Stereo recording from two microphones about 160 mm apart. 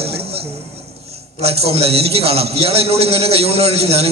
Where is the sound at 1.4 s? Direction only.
40° right (ahead or behind).